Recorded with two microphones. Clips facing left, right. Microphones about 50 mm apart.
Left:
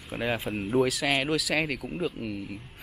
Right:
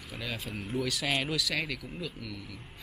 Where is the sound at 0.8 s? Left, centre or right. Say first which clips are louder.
Left 5 dB; centre.